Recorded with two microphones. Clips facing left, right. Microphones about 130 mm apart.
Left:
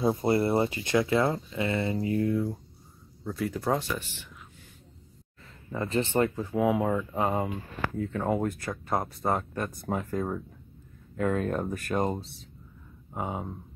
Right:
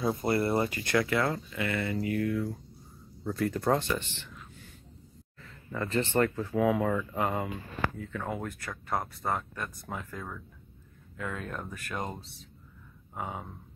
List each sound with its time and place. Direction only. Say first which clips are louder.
0.0 s speech: left 3 dB; 25° left (ahead or behind)
3.3 s speech: right 1 dB; 5° left (ahead or behind)
5.7 s speech: left 2 dB; 20° left (ahead or behind); by 12.3 s 35° left (ahead or behind)
13.1 s speech: left 4 dB; 25° left (ahead or behind)